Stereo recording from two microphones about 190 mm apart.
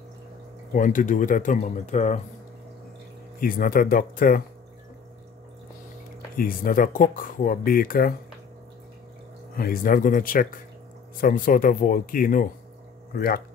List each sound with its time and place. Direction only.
0.7 s speech: 45° left (ahead or behind)
3.3 s speech: 50° left (ahead or behind)
6.3 s speech: 50° left (ahead or behind)
9.6 s speech: 50° left (ahead or behind)